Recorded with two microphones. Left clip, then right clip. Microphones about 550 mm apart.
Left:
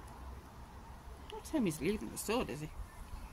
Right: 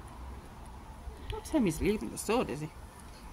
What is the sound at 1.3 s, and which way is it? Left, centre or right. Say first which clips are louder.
Speech: right 6 dB; left.